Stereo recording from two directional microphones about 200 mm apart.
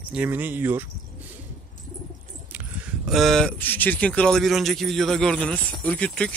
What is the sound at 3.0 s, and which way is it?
Speech, centre (ahead or behind).